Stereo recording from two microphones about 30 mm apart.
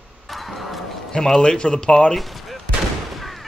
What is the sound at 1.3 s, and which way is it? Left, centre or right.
Speech, left.